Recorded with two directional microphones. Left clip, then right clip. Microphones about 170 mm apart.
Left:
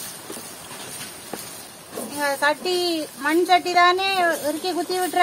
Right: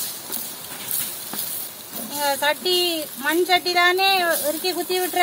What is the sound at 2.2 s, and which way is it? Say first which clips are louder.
Speech: even; 25° left (ahead or behind).